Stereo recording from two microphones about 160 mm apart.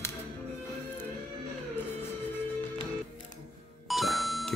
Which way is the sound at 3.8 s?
Centre (ahead or behind).